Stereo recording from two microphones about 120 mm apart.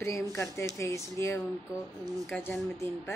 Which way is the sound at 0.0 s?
25° left (ahead or behind).